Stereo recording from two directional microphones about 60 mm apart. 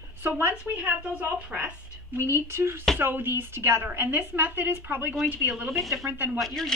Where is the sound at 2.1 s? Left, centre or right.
Right.